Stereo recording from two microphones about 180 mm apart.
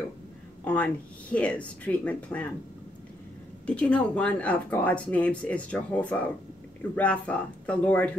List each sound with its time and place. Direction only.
0.7 s speech: 10° left (ahead or behind)
3.6 s speech: 5° left (ahead or behind)